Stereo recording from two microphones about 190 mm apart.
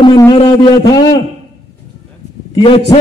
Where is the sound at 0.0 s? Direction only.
25° left (ahead or behind).